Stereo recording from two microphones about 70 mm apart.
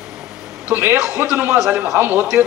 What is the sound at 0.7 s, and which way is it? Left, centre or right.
Speech, right.